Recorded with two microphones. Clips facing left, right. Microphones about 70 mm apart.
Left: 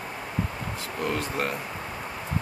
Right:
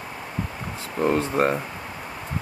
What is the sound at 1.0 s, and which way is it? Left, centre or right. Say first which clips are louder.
Speech: right 8 dB; right.